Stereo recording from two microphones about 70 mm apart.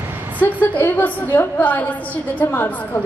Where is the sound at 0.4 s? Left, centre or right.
Left.